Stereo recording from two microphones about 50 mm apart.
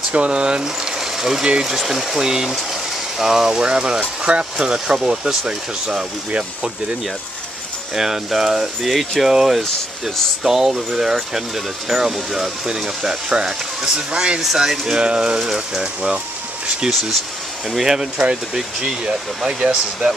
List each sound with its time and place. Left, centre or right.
0.1 s speech: centre
1.8 s speech: centre
7.9 s speech: centre
14.4 s speech: centre
17.6 s speech: centre